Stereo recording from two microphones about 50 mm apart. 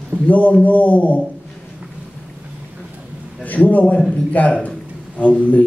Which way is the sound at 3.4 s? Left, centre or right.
Left.